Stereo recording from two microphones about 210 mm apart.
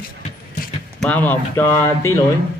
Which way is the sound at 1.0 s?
5° left (ahead or behind).